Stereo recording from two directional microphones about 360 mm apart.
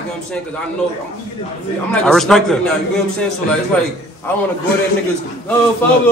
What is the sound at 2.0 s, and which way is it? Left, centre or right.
Speech, centre.